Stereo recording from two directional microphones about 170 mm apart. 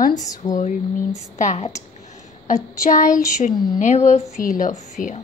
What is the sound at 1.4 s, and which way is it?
Speech, 40° left (ahead or behind).